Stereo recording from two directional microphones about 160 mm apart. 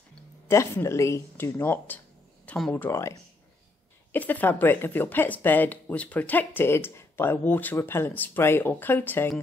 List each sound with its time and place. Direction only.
0.5 s speech: 15° left (ahead or behind)